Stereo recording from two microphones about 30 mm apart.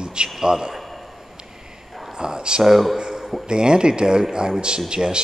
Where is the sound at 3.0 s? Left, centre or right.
Centre.